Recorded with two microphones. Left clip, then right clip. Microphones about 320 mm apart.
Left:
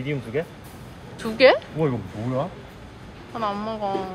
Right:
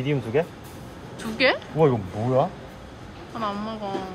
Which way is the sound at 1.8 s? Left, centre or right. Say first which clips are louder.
Right 5 dB; right.